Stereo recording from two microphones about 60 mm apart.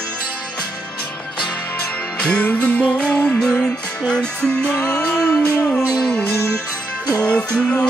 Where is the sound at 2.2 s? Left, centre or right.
Centre.